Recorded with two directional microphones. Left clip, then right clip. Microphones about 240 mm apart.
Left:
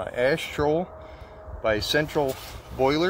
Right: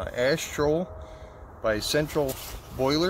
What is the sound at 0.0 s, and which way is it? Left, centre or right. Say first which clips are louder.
Speech: left 2 dB; right.